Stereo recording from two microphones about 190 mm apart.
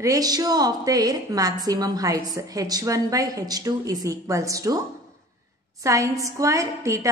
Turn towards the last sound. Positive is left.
turn(degrees=-15)  # may be behind; listen again after turning